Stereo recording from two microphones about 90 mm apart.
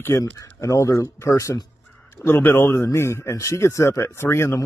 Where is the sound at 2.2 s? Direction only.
25° left (ahead or behind).